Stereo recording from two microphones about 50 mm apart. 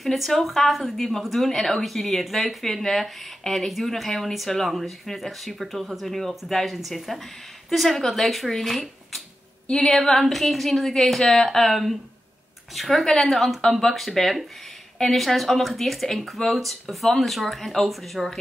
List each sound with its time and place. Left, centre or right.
0.0 s speech: centre
9.7 s a sound: centre
9.9 s speech: centre